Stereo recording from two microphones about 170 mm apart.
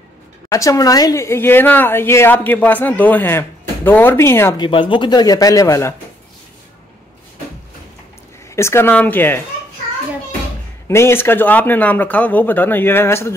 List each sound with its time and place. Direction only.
0.5 s speech: 20° left (ahead or behind)
4.6 s speech: 30° left (ahead or behind)
8.5 s speech: 15° left (ahead or behind)
10.9 s speech: 15° left (ahead or behind)